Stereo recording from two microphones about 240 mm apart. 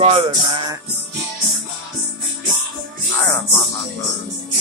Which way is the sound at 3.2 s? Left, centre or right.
Centre.